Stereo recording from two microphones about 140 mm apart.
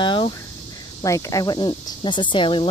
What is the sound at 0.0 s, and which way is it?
Cricket, 35° left (ahead or behind).